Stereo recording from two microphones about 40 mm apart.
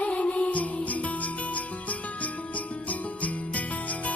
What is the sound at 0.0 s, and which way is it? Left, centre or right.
Music, left.